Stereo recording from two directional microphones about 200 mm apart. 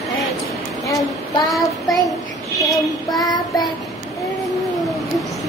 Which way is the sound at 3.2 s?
20° left (ahead or behind).